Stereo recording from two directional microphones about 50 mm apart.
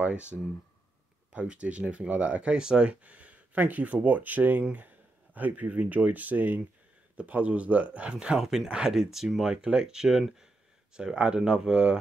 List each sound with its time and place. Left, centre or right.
0.0 s speech: right
1.3 s speech: right
8.4 s speech: centre